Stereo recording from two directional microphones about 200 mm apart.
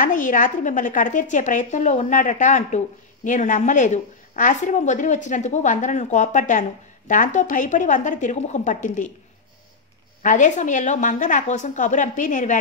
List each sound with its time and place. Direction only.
0.0 s speech: 40° left (ahead or behind)
10.2 s speech: 40° left (ahead or behind)